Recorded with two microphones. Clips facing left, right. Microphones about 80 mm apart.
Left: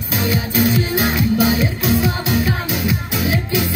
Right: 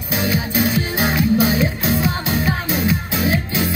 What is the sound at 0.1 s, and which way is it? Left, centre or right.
Music, right.